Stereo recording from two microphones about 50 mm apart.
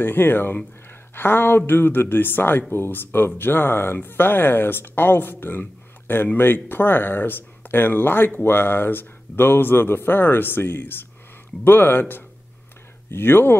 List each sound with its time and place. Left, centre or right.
0.0 s speech: left
0.8 s a sound: left
1.7 s speech: left